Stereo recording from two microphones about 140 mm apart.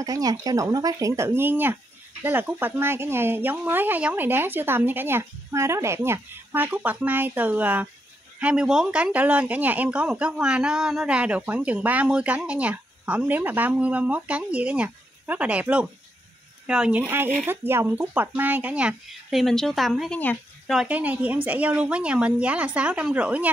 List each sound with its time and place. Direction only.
0.0 s speech: 25° right (ahead or behind); by 20.3 s 10° left (ahead or behind)
20.6 s speech: 5° right (ahead or behind)